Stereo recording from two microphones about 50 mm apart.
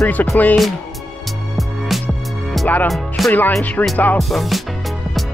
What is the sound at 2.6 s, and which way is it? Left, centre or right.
Music, left.